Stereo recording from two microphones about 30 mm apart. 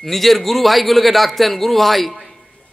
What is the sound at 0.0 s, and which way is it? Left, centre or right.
A man's voice, centre.